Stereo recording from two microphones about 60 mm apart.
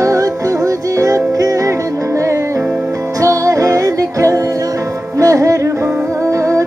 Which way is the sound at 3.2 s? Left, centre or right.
Right.